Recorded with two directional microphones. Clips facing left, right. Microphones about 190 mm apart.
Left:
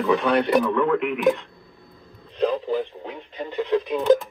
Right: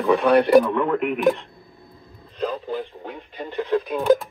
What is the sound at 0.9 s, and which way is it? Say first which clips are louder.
Speech: even; 40° right (ahead or behind).